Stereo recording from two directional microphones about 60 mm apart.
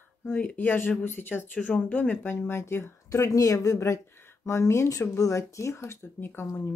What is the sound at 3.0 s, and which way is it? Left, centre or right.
Speech, left.